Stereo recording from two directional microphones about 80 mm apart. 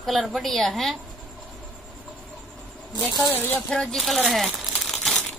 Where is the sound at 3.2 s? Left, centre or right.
Left.